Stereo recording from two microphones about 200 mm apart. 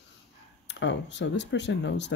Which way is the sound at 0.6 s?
65° left (ahead or behind).